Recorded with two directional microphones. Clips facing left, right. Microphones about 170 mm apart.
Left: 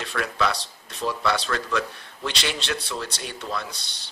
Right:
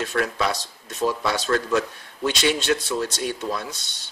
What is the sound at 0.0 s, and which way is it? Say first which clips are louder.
Speech: right 2 dB; 45° right (ahead or behind).